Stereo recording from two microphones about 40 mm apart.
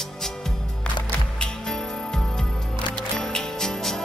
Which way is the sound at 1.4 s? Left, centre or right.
Centre.